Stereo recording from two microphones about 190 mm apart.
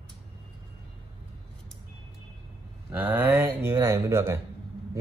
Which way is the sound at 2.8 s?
10° right (ahead or behind).